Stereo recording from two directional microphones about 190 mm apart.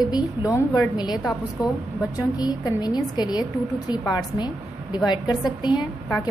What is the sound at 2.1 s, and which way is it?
A woman's voice, 20° left (ahead or behind).